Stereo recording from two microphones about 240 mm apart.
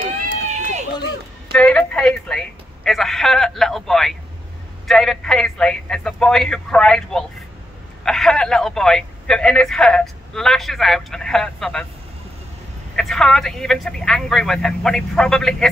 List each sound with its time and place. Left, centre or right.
0.5 s run: right
1.5 s speech: centre
12.9 s speech: centre